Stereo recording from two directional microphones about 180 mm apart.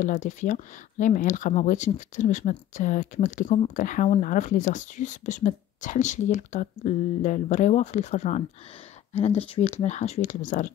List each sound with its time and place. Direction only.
0.0 s speech: 45° left (ahead or behind)